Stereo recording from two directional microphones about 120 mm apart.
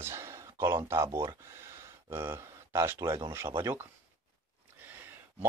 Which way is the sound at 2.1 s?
20° right (ahead or behind).